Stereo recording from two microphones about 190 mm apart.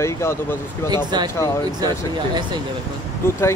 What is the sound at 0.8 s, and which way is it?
Speech, 20° right (ahead or behind).